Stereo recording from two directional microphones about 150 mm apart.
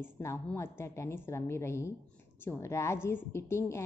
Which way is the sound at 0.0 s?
15° left (ahead or behind).